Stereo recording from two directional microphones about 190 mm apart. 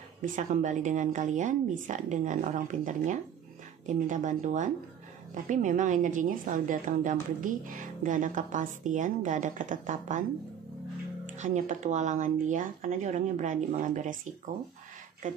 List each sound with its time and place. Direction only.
0.2 s a woman's voice: 40° right (ahead or behind)
11.3 s a woman's voice: 40° right (ahead or behind)
15.2 s speech: 40° right (ahead or behind)